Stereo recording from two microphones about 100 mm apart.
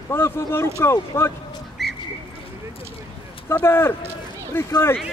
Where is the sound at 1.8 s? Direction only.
Centre (ahead or behind).